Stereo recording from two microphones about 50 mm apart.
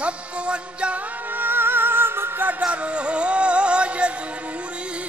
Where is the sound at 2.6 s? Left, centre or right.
Right.